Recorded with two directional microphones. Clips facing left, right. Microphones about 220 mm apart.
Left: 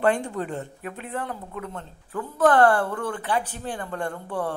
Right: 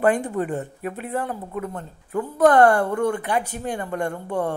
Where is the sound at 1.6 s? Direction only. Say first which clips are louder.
Right 5 dB; 15° right (ahead or behind).